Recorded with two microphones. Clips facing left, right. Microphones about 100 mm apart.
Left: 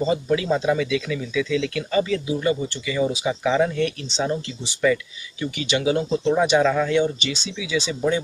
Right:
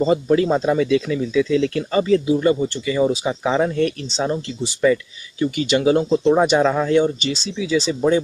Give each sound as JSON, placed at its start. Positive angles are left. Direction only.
{"t": 0.0, "sound": "speech", "side_deg": -40}
{"t": 5.4, "sound": "speech", "side_deg": -40}